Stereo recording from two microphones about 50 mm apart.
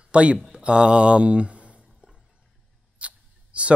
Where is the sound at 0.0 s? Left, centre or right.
Right.